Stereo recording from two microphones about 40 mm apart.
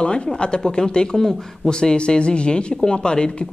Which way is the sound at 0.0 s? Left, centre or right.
Left.